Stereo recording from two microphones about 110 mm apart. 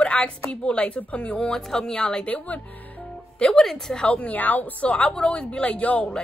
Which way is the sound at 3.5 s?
5° left (ahead or behind).